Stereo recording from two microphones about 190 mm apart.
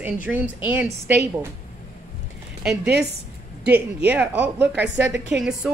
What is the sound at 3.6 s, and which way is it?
A woman's voice, 10° right (ahead or behind).